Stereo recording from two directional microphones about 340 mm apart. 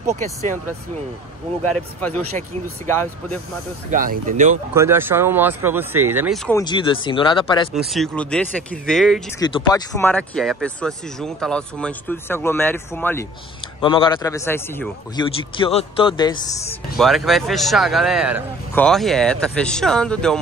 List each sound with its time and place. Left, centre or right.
0.0 s speech: centre
1.8 s speech: centre
3.9 s speech: right
4.7 s speech: centre
6.6 s a man's voice: centre
7.7 s speech: centre
9.4 s a man's voice: centre
16.9 s speech: centre